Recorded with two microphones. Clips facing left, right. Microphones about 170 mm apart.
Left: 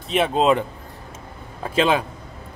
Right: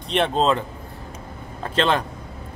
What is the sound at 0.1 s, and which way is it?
Speech, 5° left (ahead or behind).